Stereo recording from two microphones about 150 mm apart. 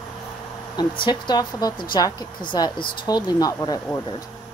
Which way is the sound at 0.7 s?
30° left (ahead or behind).